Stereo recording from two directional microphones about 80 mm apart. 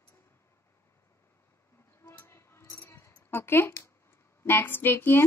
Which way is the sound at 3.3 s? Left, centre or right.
Left.